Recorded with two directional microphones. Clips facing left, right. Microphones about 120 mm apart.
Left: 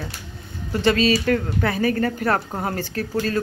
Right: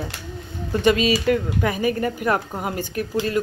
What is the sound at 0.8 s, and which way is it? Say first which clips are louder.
A woman's voice: even; 15° right (ahead or behind).